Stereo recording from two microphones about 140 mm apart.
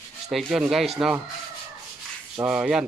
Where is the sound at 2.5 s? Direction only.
5° right (ahead or behind).